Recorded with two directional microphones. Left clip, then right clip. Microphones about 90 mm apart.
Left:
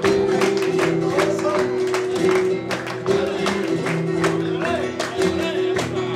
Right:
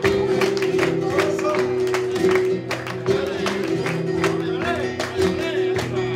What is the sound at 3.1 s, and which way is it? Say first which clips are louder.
Music: left 1 dB; 20° left (ahead or behind).